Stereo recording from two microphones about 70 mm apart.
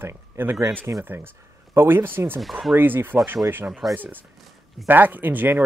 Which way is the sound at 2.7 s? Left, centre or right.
Right.